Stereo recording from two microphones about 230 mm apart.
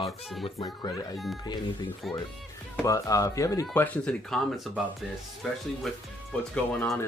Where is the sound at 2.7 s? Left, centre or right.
Centre.